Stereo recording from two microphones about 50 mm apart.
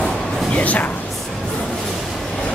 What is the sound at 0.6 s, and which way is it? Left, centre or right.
Speech, left.